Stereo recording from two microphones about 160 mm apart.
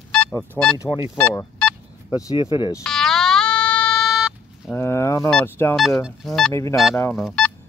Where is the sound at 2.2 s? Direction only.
25° left (ahead or behind).